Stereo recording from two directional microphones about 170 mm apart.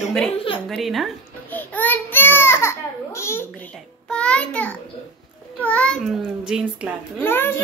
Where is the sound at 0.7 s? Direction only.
Centre (ahead or behind); by 3.4 s 15° left (ahead or behind).